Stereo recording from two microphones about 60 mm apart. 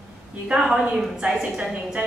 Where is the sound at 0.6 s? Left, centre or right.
Centre.